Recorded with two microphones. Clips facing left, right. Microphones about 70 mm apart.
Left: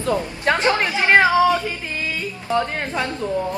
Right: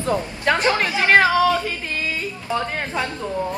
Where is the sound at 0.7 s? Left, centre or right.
Left.